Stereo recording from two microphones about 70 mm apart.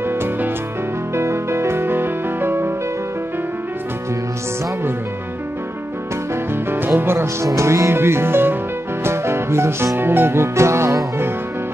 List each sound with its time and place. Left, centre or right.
0.1 s music: right
7.0 s music: right
7.4 s speech: right
9.0 s music: right